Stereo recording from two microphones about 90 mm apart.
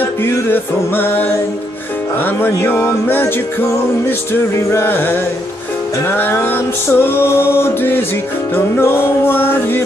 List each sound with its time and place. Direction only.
0.2 s music: 25° left (ahead or behind)
4.3 s music: 30° left (ahead or behind)